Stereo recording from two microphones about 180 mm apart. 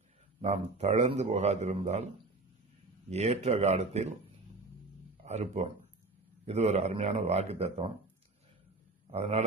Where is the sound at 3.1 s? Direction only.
40° right (ahead or behind).